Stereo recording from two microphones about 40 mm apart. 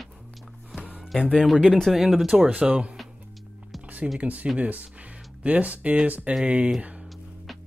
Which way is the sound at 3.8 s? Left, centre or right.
Right.